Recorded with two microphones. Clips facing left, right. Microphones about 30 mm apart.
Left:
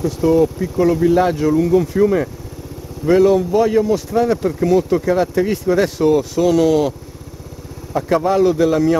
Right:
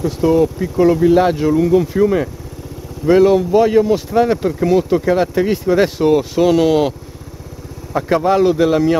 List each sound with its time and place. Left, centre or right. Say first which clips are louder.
0.0 s speech: right 1 dB; centre